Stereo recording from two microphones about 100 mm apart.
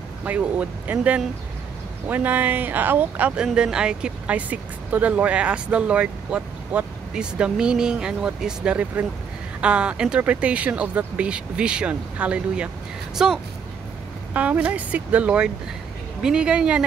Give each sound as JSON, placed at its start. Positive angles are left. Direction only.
{"t": 0.2, "sound": "speech", "side_deg": -15}